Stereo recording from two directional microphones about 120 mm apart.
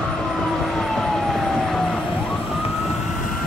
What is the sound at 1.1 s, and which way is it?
Fire engine, 5° left (ahead or behind).